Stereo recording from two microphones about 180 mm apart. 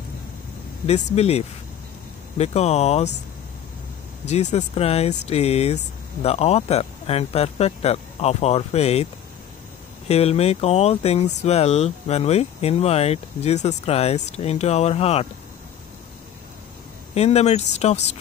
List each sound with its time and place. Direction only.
1.1 s speech: 35° left (ahead or behind)
4.3 s speech: 40° left (ahead or behind)
17.1 s speech: 35° left (ahead or behind)